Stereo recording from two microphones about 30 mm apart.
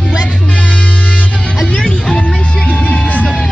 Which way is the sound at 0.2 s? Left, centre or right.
Left.